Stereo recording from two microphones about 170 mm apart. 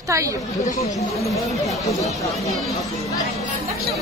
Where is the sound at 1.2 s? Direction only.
Centre (ahead or behind).